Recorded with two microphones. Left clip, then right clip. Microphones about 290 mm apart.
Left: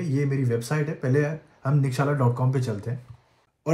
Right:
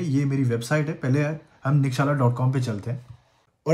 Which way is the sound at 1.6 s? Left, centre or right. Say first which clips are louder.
Right 2 dB; right.